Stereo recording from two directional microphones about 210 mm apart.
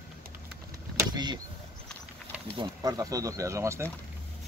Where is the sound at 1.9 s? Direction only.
5° left (ahead or behind).